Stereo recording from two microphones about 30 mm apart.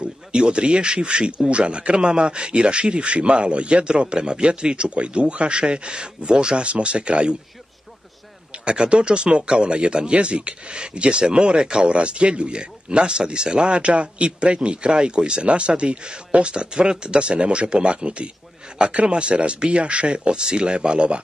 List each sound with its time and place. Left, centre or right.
0.0 s speech: right
8.6 s speech: right